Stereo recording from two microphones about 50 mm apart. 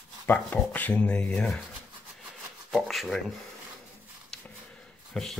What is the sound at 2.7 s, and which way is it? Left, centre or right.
Speech, centre.